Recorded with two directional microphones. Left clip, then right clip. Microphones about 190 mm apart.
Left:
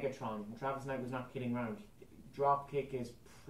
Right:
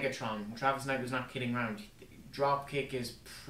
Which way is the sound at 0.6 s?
15° right (ahead or behind).